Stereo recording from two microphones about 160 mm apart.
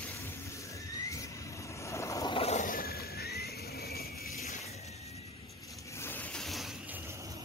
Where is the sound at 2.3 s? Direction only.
40° left (ahead or behind).